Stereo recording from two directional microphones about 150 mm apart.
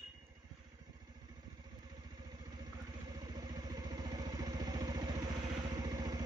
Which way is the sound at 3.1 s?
25° right (ahead or behind).